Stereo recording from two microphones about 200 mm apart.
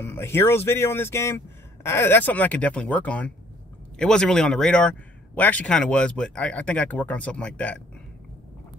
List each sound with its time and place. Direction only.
0.0 s speech: 10° left (ahead or behind)